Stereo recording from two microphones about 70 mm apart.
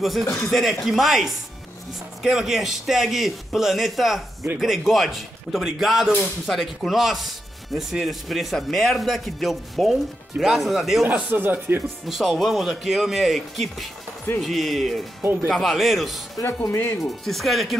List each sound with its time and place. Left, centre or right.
0.5 s speech: centre
11.1 s speech: right
12.1 s speech: centre
16.4 s speech: left
17.0 s speech: centre